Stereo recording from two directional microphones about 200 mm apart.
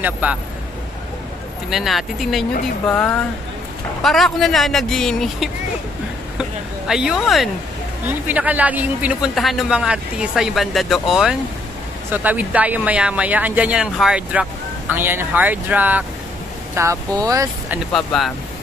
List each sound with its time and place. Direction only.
0.0 s speech: 5° right (ahead or behind)
1.7 s a man's voice: centre (ahead or behind)
6.9 s a man's voice: centre (ahead or behind)
17.9 s a man's voice: centre (ahead or behind)